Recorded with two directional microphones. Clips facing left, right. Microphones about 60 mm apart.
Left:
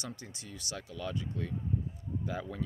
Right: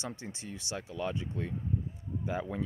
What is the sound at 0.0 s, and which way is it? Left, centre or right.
Speech, right.